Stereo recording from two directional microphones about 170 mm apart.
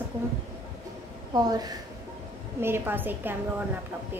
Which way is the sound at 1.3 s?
20° right (ahead or behind).